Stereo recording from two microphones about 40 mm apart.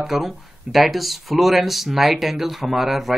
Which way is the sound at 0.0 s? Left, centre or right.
Centre.